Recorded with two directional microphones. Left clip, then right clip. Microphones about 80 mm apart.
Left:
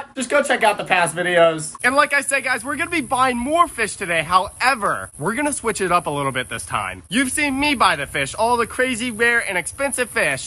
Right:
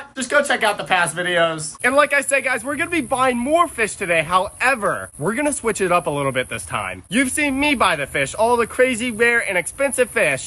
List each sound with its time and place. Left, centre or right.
0.2 s speech: right
1.8 s speech: centre